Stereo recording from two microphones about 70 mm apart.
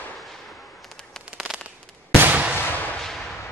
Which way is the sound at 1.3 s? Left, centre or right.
Centre.